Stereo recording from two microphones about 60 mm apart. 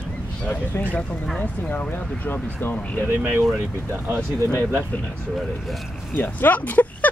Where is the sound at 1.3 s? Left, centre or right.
Centre.